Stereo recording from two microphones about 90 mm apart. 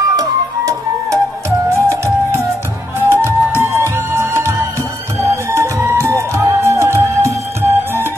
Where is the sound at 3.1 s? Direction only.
30° right (ahead or behind).